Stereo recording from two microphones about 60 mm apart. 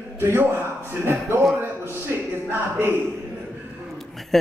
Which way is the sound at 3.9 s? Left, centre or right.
Centre.